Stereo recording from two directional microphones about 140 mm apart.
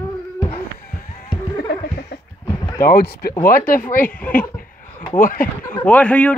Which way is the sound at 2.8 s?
90° left.